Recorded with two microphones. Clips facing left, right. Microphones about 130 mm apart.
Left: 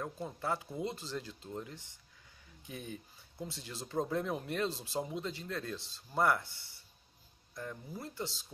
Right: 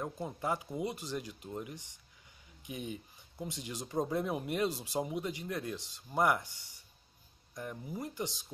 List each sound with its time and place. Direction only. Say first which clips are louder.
0.0 s speech: right 2 dB; 15° right (ahead or behind)